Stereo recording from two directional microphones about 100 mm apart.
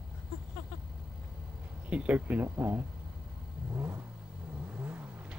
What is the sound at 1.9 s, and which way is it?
Speech, 15° right (ahead or behind).